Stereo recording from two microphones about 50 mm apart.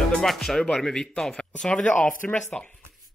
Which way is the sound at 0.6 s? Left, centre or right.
Centre.